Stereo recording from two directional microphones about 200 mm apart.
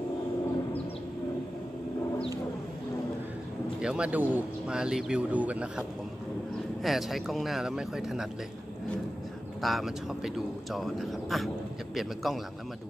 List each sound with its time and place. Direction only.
3.8 s speech: 5° right (ahead or behind)
9.6 s speech: centre (ahead or behind)